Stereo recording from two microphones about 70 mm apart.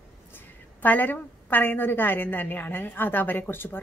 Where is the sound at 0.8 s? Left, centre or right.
Left.